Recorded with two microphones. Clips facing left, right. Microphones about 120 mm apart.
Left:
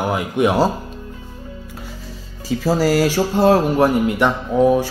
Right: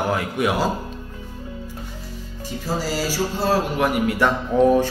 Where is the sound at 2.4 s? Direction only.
80° left; by 3.5 s 55° left (ahead or behind).